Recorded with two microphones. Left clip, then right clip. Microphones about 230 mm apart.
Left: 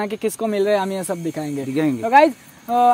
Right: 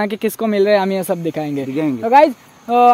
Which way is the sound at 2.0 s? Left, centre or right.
Right.